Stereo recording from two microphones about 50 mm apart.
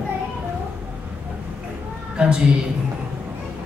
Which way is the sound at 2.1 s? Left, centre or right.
Centre.